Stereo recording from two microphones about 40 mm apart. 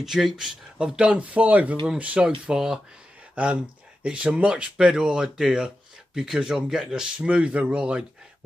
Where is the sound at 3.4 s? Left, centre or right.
Right.